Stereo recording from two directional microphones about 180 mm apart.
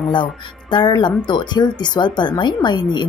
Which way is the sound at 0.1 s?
25° left (ahead or behind).